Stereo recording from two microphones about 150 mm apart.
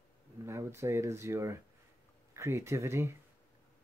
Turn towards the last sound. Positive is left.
turn(degrees=-20)  # may be behind; listen again after turning